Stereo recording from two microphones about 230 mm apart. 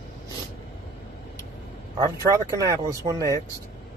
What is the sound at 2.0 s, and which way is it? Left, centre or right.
Speech, centre.